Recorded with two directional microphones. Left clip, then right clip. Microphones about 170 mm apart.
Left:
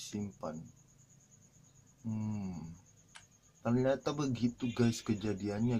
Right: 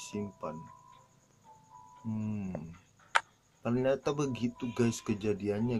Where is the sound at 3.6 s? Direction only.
15° right (ahead or behind).